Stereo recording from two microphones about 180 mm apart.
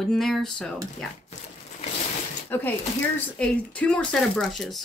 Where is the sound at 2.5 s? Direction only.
10° left (ahead or behind).